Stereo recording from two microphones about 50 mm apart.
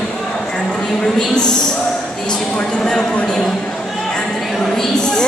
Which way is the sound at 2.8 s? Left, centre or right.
Centre.